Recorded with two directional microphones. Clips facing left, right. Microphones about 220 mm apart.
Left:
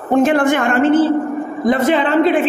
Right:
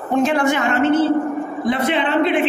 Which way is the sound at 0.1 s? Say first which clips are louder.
Left 4 dB; 55° left (ahead or behind).